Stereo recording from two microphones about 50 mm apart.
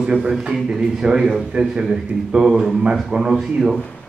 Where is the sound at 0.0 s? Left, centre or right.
Centre.